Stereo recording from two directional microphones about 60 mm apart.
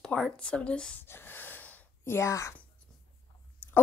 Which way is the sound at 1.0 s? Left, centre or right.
Left.